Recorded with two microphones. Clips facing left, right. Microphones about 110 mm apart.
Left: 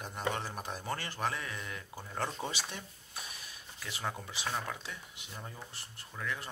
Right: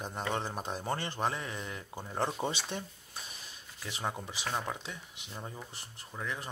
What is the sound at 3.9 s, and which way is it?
Speech, 20° right (ahead or behind).